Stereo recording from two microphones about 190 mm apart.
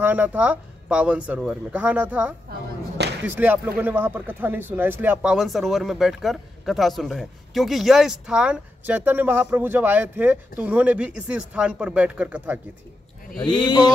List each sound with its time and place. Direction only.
0.0 s speech: 10° right (ahead or behind)
13.4 s speech: 25° left (ahead or behind)